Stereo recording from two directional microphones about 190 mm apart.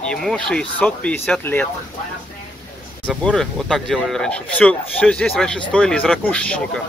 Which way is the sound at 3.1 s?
5° right (ahead or behind).